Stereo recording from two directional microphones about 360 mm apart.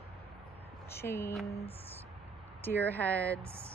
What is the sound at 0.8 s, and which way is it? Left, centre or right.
Speech, centre.